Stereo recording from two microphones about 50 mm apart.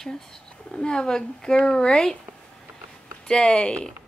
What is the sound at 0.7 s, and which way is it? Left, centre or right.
Speech, centre.